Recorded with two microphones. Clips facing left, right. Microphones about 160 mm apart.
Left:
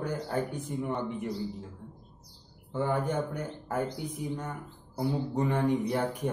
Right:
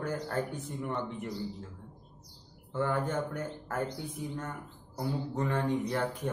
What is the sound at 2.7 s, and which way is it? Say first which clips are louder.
Speech: left 2 dB; 15° left (ahead or behind).